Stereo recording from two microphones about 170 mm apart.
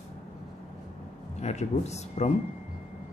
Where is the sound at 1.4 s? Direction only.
40° left (ahead or behind).